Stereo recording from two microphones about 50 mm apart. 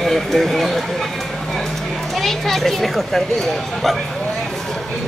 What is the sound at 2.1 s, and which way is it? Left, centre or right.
Speech, centre.